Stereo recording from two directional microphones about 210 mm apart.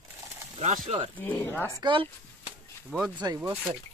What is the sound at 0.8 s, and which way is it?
Speech, 25° right (ahead or behind).